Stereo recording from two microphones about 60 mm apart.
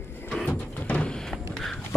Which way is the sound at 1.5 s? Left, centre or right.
Centre.